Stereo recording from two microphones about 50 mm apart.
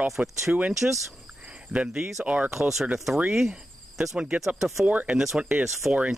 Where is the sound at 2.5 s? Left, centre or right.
Centre.